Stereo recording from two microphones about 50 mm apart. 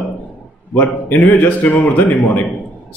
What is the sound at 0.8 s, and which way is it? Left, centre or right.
Speech, left.